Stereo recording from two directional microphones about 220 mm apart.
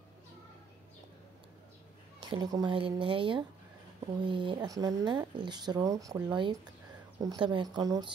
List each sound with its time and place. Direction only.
2.1 s speech: 20° right (ahead or behind)